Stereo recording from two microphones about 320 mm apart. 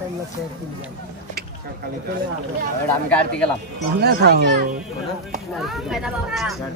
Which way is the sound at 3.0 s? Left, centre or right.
Centre.